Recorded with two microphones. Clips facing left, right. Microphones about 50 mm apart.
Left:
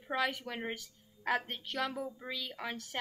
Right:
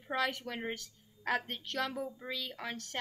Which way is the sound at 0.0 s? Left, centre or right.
Centre.